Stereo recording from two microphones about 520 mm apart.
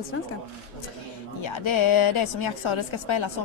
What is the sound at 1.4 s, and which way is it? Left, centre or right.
Speech, left.